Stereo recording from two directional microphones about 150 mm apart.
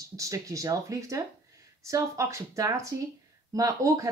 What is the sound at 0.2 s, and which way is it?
Speech, 20° right (ahead or behind).